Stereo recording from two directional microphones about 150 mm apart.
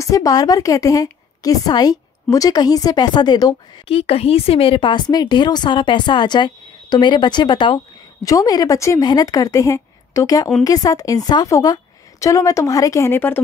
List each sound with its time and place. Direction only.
0.0 s speech: 25° left (ahead or behind)
3.8 s speech: 40° left (ahead or behind); by 13.4 s 15° left (ahead or behind)